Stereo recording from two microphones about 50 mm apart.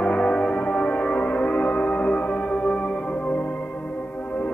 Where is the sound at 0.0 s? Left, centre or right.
Centre.